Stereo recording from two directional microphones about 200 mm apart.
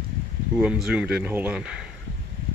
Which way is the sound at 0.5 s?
5° right (ahead or behind).